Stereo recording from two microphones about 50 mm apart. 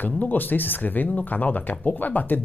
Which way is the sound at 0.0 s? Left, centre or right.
Left.